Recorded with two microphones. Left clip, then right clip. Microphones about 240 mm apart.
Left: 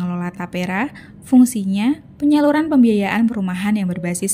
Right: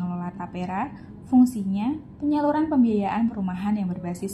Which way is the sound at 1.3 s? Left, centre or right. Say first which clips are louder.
Left 6 dB; left.